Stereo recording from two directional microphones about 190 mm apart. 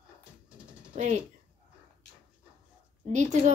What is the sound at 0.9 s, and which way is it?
Speech, 35° right (ahead or behind).